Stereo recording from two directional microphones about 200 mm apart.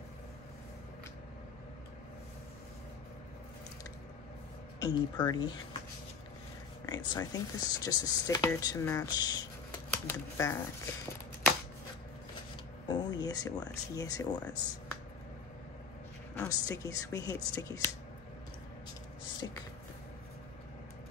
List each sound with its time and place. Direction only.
4.7 s speech: 20° left (ahead or behind)
6.9 s speech: 20° left (ahead or behind)
12.8 s speech: 20° left (ahead or behind)
16.3 s speech: 15° left (ahead or behind)